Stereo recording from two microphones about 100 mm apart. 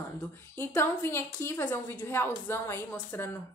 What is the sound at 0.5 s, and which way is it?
A woman's voice, 25° left (ahead or behind).